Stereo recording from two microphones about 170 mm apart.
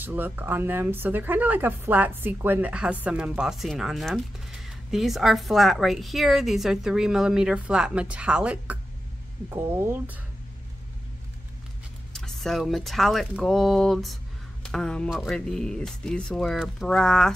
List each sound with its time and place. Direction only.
0.0 s speech: 10° right (ahead or behind)
12.1 s speech: centre (ahead or behind)